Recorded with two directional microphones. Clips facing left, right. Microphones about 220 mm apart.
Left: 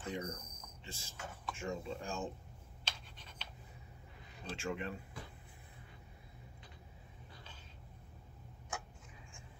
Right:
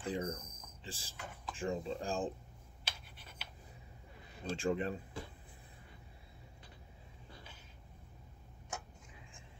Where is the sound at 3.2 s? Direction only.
10° right (ahead or behind).